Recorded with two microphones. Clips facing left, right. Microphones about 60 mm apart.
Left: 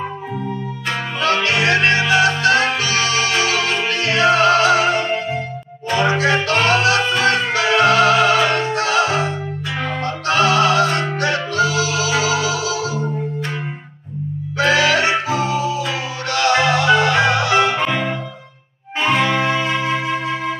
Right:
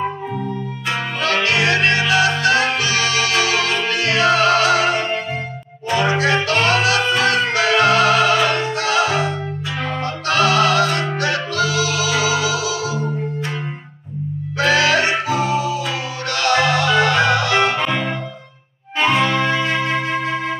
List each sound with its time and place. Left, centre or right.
1.4 s music: left
14.6 s music: left
19.1 s music: centre